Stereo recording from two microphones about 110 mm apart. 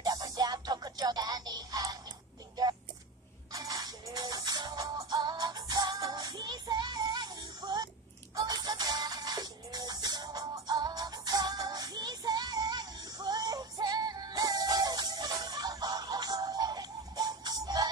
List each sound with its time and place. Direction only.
0.0 s music: 35° right (ahead or behind)
3.5 s music: 35° right (ahead or behind)